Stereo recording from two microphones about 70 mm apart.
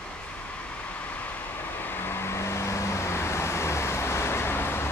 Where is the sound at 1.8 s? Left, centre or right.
Left.